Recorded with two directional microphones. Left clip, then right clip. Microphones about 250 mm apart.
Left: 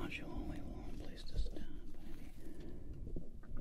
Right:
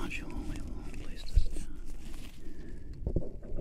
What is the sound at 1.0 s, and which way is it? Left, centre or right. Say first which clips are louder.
Whispering: right 5 dB; centre.